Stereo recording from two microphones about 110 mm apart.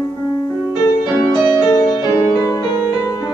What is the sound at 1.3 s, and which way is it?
Music, 40° left (ahead or behind).